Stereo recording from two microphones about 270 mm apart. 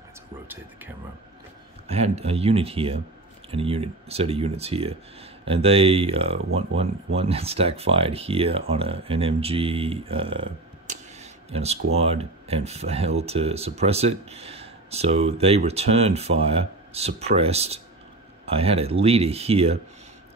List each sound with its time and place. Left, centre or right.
0.5 s speech: centre
1.9 s speech: right